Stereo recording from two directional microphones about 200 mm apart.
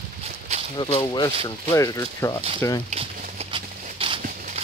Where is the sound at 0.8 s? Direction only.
25° left (ahead or behind).